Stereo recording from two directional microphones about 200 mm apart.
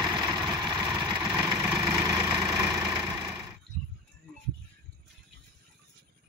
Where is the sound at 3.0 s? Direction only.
20° right (ahead or behind).